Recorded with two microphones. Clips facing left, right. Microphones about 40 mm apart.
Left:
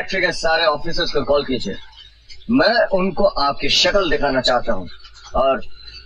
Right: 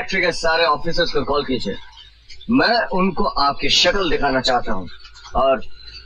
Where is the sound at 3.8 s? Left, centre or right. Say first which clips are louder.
Left 2 dB; centre.